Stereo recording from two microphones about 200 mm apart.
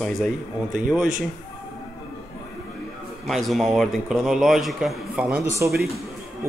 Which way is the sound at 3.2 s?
Centre (ahead or behind).